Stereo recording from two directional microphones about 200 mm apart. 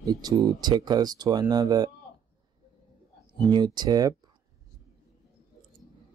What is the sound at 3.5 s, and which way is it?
Speech, 20° right (ahead or behind).